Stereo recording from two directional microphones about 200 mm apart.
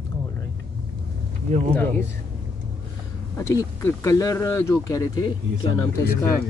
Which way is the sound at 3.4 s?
15° left (ahead or behind).